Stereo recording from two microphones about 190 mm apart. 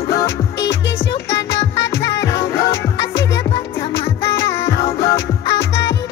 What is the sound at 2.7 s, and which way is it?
Music, 70° left (ahead or behind).